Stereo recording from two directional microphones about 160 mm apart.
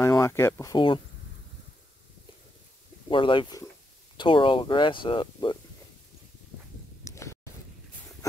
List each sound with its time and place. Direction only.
0.0 s speech: 15° left (ahead or behind)
3.1 s speech: 30° left (ahead or behind)